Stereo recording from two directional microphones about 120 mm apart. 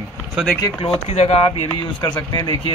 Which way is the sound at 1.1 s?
60° left (ahead or behind).